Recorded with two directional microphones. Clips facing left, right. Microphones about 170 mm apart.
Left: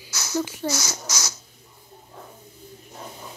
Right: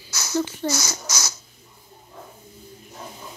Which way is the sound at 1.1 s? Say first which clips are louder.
Right 1 dB; 45° right (ahead or behind).